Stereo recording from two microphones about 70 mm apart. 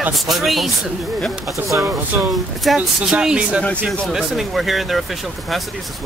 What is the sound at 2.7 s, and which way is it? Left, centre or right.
Speech, centre.